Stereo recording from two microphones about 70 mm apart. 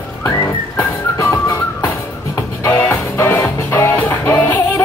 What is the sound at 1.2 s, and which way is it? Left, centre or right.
Music, left.